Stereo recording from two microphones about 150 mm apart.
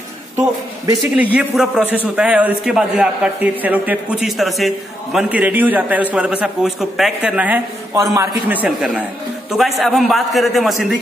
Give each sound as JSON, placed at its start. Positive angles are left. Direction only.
{"t": 1.1, "sound": "a man's voice", "side_deg": -10}
{"t": 5.3, "sound": "a man's voice", "side_deg": -10}
{"t": 8.0, "sound": "a man's voice", "side_deg": -20}
{"t": 8.5, "sound": "a man's voice", "side_deg": -5}